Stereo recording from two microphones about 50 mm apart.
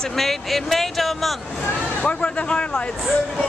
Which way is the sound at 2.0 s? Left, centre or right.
Left.